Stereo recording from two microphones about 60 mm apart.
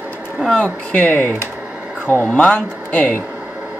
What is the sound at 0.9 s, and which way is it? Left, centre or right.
Speech, left.